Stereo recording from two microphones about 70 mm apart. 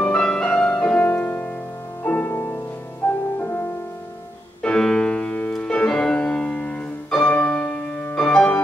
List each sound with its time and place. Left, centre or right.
0.0 s music: centre; by 3.6 s left
4.6 s music: centre